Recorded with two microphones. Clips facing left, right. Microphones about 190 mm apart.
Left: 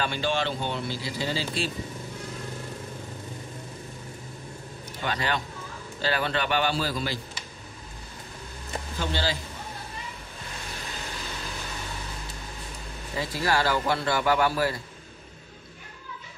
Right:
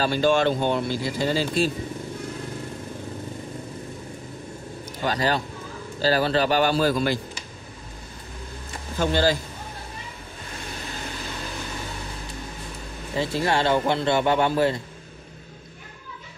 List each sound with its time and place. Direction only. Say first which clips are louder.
0.0 s speech: right 7 dB; 40° right (ahead or behind)
5.0 s a man's voice: right 5 dB; 35° right (ahead or behind)
9.0 s speech: right 9 dB; 45° right (ahead or behind)
13.1 s a man's voice: right 3 dB; 25° right (ahead or behind)